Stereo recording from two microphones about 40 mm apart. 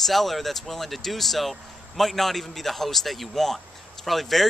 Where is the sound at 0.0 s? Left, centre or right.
Centre.